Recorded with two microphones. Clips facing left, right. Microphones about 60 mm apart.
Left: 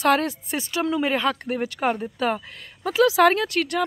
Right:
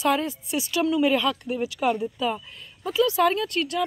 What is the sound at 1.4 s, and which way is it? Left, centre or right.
Speech, left.